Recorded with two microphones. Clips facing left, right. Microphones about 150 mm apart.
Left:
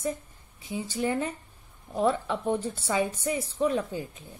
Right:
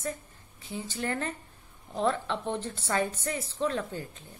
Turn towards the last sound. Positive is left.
turn(degrees=15)  # may be behind; listen again after turning